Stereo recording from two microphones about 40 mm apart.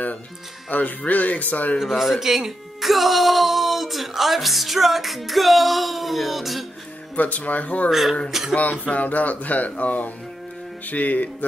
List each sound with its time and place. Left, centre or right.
0.7 s speech: left
1.8 s speech: centre
7.2 s speech: left
7.9 s speech: centre
8.5 s speech: left